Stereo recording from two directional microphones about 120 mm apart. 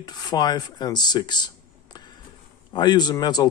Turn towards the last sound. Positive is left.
turn(degrees=35)  # may be behind; listen again after turning